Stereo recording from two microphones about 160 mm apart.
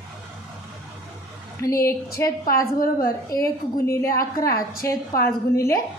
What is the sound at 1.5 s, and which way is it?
A woman's voice, 20° left (ahead or behind).